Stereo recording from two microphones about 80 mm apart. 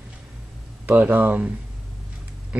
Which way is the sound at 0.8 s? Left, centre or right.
Right.